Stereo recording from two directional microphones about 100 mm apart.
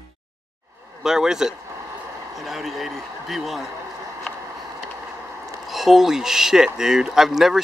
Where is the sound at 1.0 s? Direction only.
5° right (ahead or behind).